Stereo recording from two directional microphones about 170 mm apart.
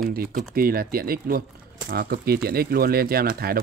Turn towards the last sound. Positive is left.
turn(degrees=-65)  # may be behind; listen again after turning